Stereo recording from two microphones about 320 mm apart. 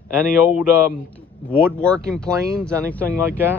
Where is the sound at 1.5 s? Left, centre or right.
Centre.